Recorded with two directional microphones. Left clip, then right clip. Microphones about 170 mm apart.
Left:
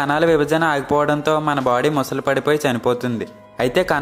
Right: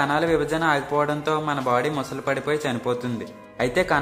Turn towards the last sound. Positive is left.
turn(degrees=30)  # may be behind; listen again after turning